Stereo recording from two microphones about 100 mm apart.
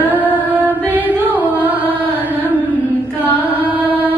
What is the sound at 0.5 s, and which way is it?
Carnatic music, 15° right (ahead or behind).